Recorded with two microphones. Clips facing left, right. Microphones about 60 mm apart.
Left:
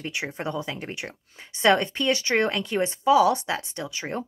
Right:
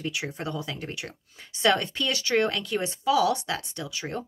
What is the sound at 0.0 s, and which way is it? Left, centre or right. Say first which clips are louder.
Speech: left 1 dB; left.